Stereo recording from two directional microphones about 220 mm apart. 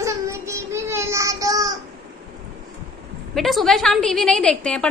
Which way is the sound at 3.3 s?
Centre (ahead or behind).